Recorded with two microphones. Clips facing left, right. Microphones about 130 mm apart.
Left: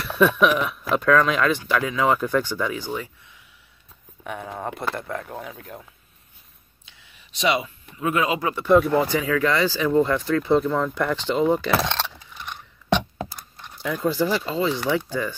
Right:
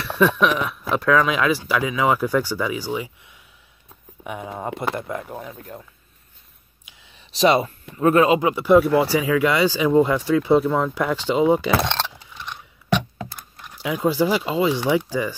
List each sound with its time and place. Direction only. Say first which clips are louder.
0.0 s speech: even; centre (ahead or behind)
4.2 s speech: right 1 dB; 10° right (ahead or behind)
5.3 s speech: right 1 dB; centre (ahead or behind)
7.2 s speech: right 6 dB; 35° right (ahead or behind)
8.4 s speech: right 2 dB; 15° right (ahead or behind)
13.8 s speech: right 3 dB; 10° right (ahead or behind)